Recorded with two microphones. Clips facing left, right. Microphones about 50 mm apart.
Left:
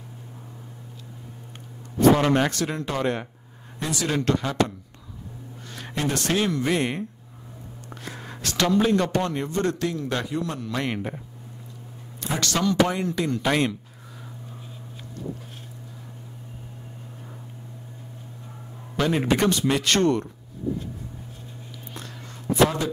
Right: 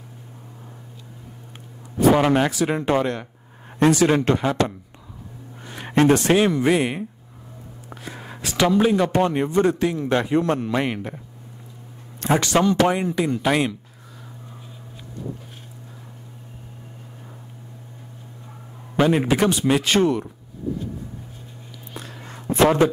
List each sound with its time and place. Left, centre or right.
2.0 s speech: centre
2.7 s a man's voice: right
4.2 s speech: right
5.7 s a sound: right
6.1 s speech: right
10.3 s a man's voice: right
12.4 s speech: right
13.1 s speech: centre
18.9 s speech: centre
22.5 s speech: right